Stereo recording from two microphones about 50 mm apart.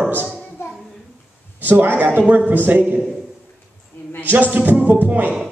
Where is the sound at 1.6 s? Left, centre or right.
Right.